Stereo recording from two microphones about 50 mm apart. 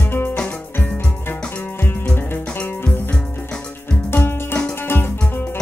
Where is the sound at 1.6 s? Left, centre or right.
Left.